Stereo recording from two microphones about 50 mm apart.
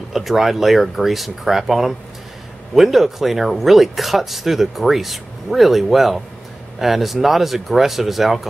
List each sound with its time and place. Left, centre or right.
0.1 s speech: centre